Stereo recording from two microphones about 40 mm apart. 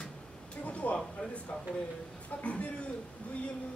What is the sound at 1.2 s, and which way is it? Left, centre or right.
Speech, left.